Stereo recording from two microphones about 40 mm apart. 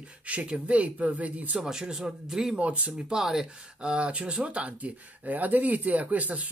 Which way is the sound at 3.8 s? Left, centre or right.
Right.